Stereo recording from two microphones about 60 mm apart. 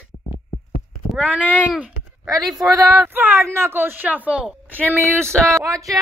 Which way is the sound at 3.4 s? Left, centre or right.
Right.